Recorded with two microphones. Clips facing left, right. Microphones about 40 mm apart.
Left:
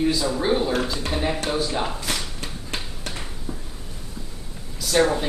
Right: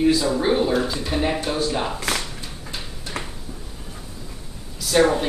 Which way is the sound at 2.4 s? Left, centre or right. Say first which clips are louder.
Left 2 dB; left.